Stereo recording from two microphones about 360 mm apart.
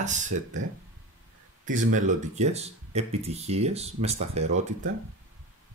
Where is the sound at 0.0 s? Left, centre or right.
Centre.